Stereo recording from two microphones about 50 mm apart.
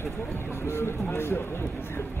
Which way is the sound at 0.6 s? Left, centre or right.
Left.